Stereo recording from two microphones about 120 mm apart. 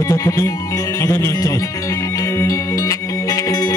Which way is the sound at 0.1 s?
25° left (ahead or behind).